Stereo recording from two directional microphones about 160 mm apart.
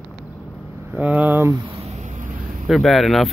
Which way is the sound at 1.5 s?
30° right (ahead or behind).